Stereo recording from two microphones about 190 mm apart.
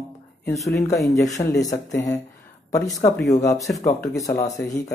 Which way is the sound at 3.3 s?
15° left (ahead or behind).